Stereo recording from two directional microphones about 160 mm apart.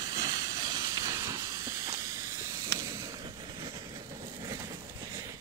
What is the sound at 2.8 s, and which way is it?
Vehicle, 20° right (ahead or behind).